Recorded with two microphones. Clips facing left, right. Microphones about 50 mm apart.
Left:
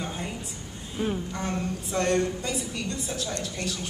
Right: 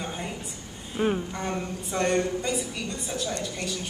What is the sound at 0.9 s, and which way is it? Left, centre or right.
Speech, right.